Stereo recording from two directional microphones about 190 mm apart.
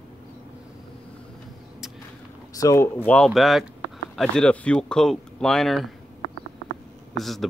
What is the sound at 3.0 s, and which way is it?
Speech, 5° left (ahead or behind).